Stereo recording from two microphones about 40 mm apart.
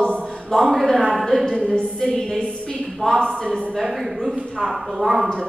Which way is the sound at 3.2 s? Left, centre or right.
Centre.